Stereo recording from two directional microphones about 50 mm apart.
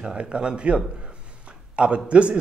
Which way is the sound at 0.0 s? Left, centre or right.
Right.